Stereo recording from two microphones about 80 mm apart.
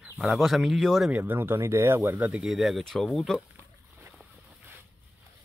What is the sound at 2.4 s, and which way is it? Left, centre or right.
Speech, centre.